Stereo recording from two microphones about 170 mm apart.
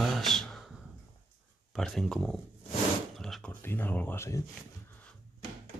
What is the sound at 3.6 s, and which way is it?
Speech, 10° left (ahead or behind).